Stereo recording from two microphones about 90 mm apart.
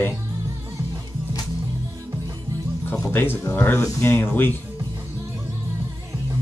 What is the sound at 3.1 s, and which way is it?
Speech, 25° left (ahead or behind).